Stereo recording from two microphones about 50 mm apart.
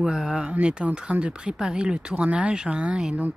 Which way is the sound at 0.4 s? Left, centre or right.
Right.